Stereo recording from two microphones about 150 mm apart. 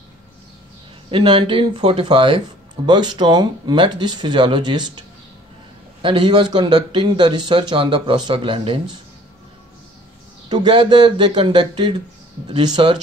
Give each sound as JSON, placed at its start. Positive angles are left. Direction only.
{"t": 1.1, "sound": "speech", "side_deg": -35}
{"t": 6.0, "sound": "speech", "side_deg": -30}
{"t": 10.5, "sound": "speech", "side_deg": -30}